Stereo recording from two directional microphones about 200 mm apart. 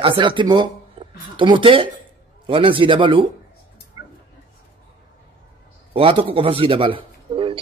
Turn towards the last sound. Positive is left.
turn(degrees=-25)  # may be behind; listen again after turning